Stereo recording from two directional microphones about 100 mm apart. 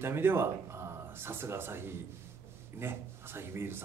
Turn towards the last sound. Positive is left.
turn(degrees=-25)  # may be behind; listen again after turning